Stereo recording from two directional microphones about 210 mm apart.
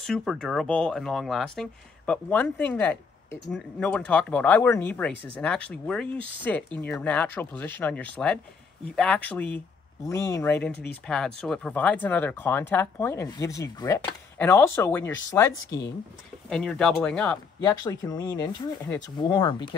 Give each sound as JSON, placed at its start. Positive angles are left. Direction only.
{"t": 0.0, "sound": "speech", "side_deg": 0}
{"t": 16.4, "sound": "speech", "side_deg": 5}
{"t": 17.6, "sound": "speech", "side_deg": 20}